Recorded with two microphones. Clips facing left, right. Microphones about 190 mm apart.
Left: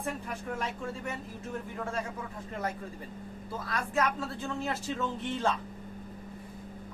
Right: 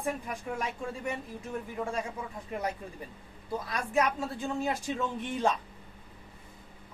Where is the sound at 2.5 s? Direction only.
15° right (ahead or behind).